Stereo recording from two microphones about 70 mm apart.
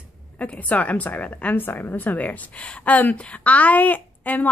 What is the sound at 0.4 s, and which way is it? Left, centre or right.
A woman's voice, left.